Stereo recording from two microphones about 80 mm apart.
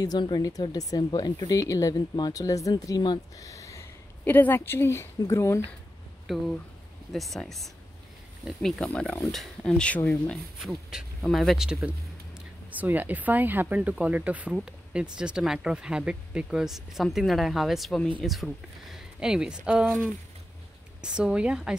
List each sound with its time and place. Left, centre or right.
0.4 s speech: left
2.1 s speech: left
2.4 s speech: left
3.3 s a sound: left
4.2 s speech: left
6.2 s speech: centre
9.2 s speech: centre
10.3 s speech: centre
12.7 s speech: right
21.0 s speech: centre